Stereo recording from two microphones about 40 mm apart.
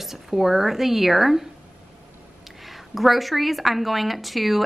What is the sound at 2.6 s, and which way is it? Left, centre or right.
A woman's voice, centre.